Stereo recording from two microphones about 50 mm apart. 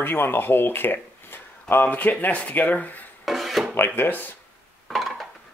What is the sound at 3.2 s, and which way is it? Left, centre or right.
Filing, centre.